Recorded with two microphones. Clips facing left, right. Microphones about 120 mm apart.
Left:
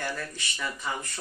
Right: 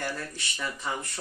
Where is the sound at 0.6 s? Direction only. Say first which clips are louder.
Even; 30° right (ahead or behind).